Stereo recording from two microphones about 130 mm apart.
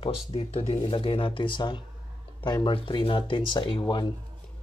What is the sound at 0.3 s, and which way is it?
Speech, 50° left (ahead or behind).